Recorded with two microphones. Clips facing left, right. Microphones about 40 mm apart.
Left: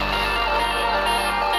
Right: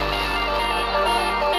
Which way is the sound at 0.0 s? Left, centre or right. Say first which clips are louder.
Left 1 dB; centre.